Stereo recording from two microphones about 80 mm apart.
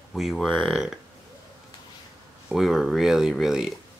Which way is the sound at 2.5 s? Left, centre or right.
Centre.